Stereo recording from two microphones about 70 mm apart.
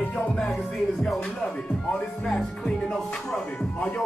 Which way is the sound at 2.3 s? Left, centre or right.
Centre.